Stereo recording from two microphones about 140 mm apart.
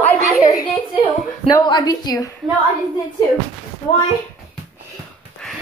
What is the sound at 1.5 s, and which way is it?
Speech, 30° left (ahead or behind).